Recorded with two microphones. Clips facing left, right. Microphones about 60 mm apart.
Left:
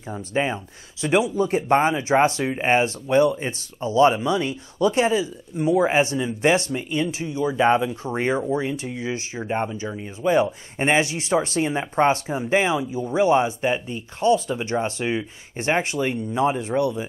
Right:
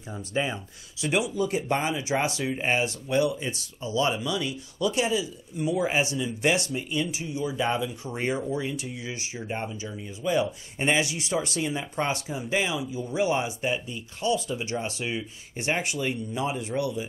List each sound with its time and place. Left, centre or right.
0.1 s speech: left